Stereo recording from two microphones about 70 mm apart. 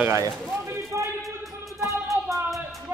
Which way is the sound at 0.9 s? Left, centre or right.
Right.